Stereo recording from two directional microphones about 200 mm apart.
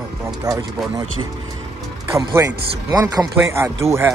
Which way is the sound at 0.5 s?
15° right (ahead or behind).